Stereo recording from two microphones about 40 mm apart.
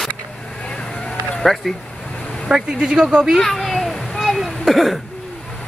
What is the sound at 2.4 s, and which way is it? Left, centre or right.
Speech, centre.